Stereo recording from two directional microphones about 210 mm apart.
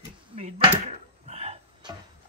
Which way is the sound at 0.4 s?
30° right (ahead or behind).